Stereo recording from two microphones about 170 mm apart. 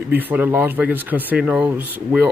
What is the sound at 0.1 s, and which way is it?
Speech, 10° right (ahead or behind).